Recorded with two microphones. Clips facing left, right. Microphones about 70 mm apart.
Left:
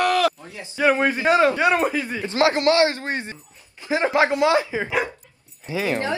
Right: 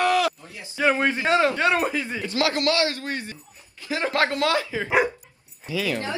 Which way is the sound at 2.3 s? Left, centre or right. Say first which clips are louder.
Left 5 dB; left.